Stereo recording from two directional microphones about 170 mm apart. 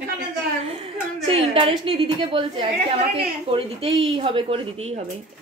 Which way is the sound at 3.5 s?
35° right (ahead or behind).